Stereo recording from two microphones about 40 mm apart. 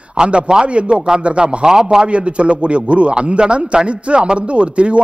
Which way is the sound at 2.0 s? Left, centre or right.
Right.